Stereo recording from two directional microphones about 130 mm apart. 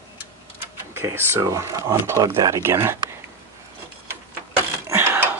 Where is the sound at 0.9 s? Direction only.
20° right (ahead or behind).